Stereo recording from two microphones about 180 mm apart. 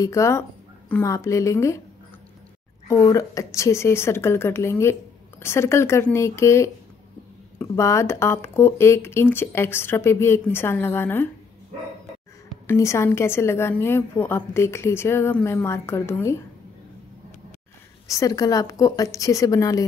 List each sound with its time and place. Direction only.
0.0 s a woman's voice: 15° left (ahead or behind)
2.9 s a woman's voice: 20° left (ahead or behind)
12.6 s a woman's voice: 15° left (ahead or behind)
18.0 s a woman's voice: 20° left (ahead or behind)